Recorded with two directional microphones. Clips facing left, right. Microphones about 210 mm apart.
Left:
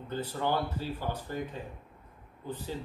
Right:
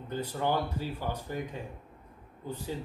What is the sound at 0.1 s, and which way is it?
A man's voice, 15° right (ahead or behind).